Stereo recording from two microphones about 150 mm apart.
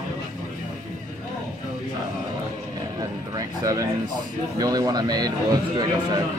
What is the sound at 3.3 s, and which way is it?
Speech, 25° right (ahead or behind).